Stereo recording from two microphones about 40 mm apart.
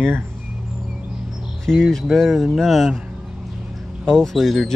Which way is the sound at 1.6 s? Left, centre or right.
Centre.